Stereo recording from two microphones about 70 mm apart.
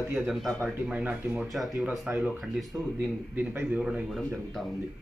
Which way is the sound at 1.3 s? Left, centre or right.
Centre.